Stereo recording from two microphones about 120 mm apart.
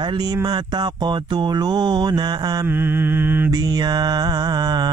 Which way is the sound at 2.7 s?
15° right (ahead or behind).